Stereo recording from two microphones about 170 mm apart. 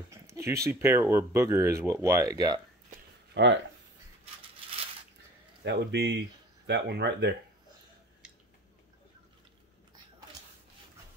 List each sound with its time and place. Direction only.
0.1 s a sound: 15° right (ahead or behind)
1.1 s speech: 15° right (ahead or behind)
3.4 s speech: 90° right
5.6 s speech: 80° right